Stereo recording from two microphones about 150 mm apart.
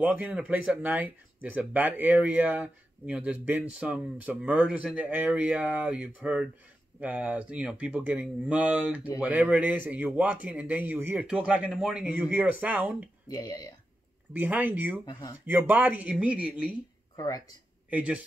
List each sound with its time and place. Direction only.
0.0 s speech: 5° right (ahead or behind)
13.3 s speech: 25° left (ahead or behind)
14.4 s speech: 10° right (ahead or behind)
15.0 s speech: 30° left (ahead or behind)
15.4 s speech: 10° right (ahead or behind)
17.8 s speech: 10° right (ahead or behind)